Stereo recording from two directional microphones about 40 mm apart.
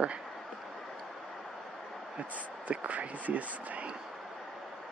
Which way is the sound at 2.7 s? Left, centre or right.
Right.